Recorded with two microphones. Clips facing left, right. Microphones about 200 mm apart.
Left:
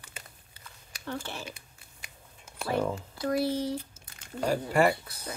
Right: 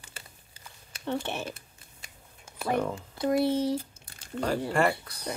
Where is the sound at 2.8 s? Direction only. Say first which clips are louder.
Left 3 dB; 5° left (ahead or behind).